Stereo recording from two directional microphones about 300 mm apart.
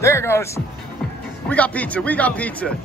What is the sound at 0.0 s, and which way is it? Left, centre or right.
Speech, centre.